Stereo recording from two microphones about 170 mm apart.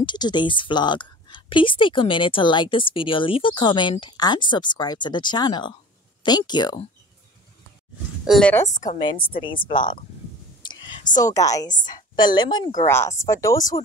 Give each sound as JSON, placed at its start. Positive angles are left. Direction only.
{"t": 0.0, "sound": "a woman's voice", "side_deg": 25}
{"t": 8.3, "sound": "a woman's voice", "side_deg": 5}
{"t": 8.9, "sound": "a woman's voice", "side_deg": 30}
{"t": 10.6, "sound": "whispering", "side_deg": 25}
{"t": 11.8, "sound": "a woman's voice", "side_deg": 25}